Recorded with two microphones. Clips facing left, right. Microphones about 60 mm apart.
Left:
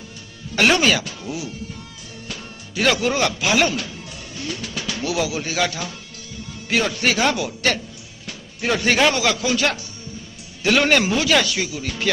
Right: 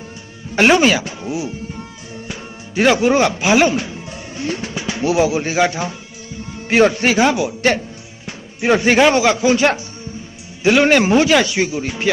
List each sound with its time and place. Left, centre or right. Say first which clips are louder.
0.6 s a man's voice: right 5 dB; right
1.0 s music: right 6 dB; right
7.1 s a man's voice: right 5 dB; centre
8.3 s music: right 7 dB; right
9.1 s a man's voice: right 7 dB; right
11.1 s a man's voice: right 6 dB; right